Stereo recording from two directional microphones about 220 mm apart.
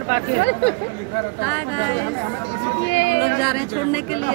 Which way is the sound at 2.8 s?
60° left (ahead or behind).